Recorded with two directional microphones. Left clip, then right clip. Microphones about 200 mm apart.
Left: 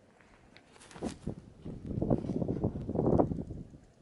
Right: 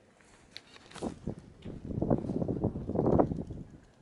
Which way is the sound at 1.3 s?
45° left (ahead or behind).